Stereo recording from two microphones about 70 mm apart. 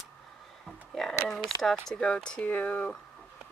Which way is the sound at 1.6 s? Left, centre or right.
Centre.